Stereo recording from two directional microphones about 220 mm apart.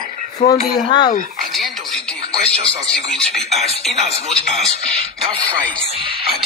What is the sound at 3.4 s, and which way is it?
Speech, 30° right (ahead or behind).